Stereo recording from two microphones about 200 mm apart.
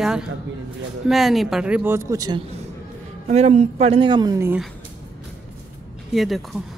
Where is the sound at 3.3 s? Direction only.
35° right (ahead or behind); by 4.6 s 15° right (ahead or behind).